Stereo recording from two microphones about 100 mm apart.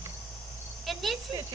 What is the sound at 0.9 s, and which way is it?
Cricket, centre (ahead or behind).